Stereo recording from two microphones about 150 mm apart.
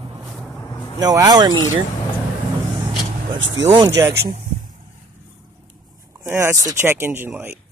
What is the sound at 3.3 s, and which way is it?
Speech, 35° right (ahead or behind).